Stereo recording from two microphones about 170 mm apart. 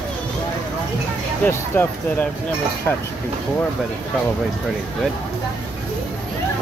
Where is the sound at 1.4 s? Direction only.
10° left (ahead or behind).